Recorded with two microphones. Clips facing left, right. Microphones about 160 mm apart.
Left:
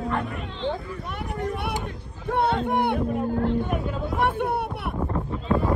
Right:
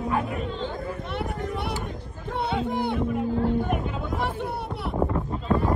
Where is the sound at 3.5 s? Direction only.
50° right (ahead or behind).